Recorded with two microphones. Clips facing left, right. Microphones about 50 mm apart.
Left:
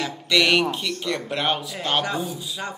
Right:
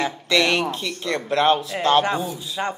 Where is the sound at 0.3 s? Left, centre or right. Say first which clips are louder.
Left 1 dB; right.